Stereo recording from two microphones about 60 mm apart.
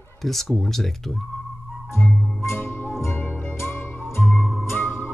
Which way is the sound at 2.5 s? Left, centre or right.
Left.